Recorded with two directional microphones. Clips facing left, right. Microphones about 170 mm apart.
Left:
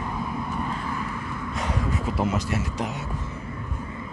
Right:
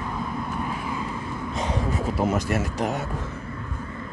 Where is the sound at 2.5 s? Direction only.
50° right (ahead or behind).